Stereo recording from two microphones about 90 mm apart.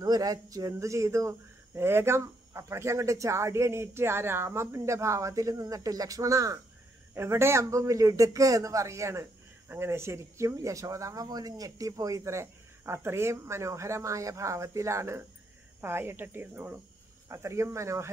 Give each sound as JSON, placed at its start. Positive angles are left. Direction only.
{"t": 0.0, "sound": "a man's voice", "side_deg": -45}